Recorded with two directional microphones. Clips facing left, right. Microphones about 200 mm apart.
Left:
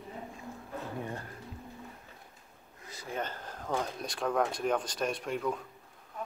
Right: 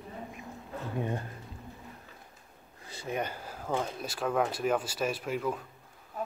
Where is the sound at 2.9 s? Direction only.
30° right (ahead or behind).